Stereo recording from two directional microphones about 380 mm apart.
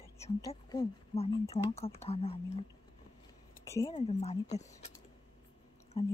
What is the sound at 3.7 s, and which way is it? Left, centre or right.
Speech, centre.